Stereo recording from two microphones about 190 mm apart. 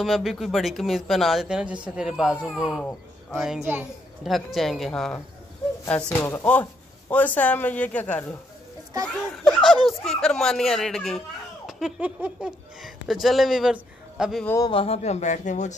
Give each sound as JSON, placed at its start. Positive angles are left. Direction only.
{"t": 0.0, "sound": "a child's voice", "side_deg": 0}
{"t": 14.4, "sound": "speech", "side_deg": 15}
{"t": 14.7, "sound": "a man's voice", "side_deg": 30}